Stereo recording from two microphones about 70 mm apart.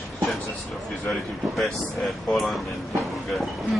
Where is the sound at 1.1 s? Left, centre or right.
Centre.